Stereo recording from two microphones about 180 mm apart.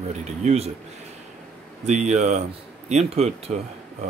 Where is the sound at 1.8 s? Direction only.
40° right (ahead or behind).